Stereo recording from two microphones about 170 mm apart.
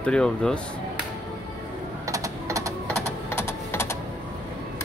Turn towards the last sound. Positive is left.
turn(degrees=15)  # may be behind; listen again after turning